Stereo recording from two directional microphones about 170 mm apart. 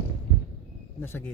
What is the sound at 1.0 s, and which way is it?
Speech, 15° left (ahead or behind).